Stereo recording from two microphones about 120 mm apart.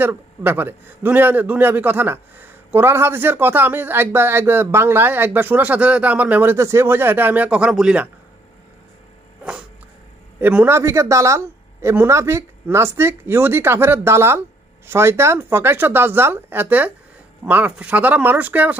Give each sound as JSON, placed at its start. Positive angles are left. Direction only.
{"t": 0.0, "sound": "a man's voice", "side_deg": -15}
{"t": 9.4, "sound": "a sound", "side_deg": -10}
{"t": 10.4, "sound": "a man's voice", "side_deg": -15}